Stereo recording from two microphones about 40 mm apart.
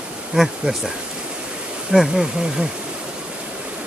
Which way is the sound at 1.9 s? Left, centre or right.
Centre.